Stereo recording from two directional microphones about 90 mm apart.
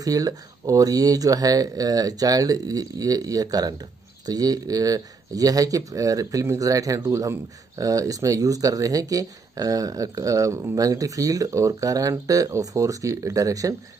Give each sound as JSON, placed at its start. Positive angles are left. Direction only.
{"t": 0.0, "sound": "speech", "side_deg": -45}